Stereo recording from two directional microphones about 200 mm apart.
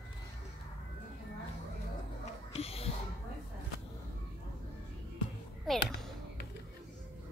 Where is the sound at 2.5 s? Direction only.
30° left (ahead or behind).